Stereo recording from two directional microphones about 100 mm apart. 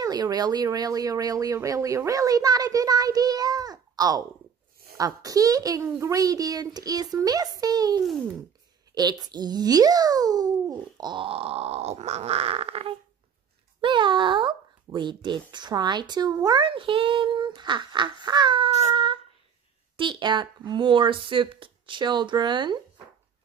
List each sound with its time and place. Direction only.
0.0 s speech: 40° right (ahead or behind)
11.2 s speech: 75° right (ahead or behind)
13.7 s speech: 55° right (ahead or behind)
16.6 s child singing: 60° right (ahead or behind)
17.6 s speech: 50° right (ahead or behind)
20.0 s speech: 50° right (ahead or behind)